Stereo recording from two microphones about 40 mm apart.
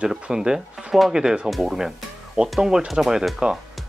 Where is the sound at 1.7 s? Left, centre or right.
Centre.